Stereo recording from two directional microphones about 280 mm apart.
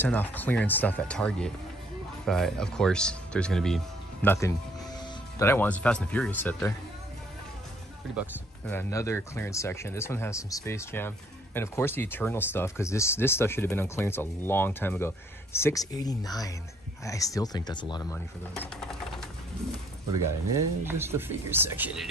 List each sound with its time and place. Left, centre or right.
0.0 s speech: centre
8.6 s speech: centre
18.6 s sewing machine: centre
20.5 s speech: centre